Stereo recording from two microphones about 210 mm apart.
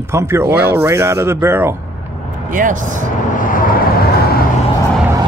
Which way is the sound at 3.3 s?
40° left (ahead or behind).